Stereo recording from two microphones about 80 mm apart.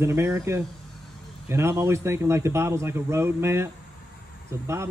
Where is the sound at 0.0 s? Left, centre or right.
Right.